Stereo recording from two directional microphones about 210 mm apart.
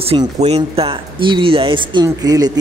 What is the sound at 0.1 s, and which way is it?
Speech, 30° right (ahead or behind).